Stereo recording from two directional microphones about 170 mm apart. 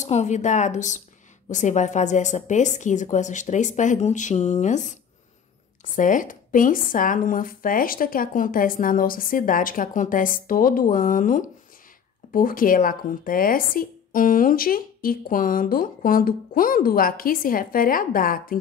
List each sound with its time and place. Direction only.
0.0 s speech: 40° left (ahead or behind)
5.9 s speech: 50° left (ahead or behind)